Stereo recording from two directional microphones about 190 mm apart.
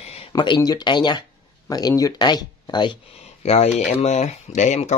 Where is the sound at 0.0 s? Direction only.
35° left (ahead or behind).